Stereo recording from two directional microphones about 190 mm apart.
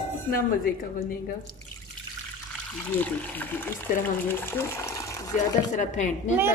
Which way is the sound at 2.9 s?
10° left (ahead or behind).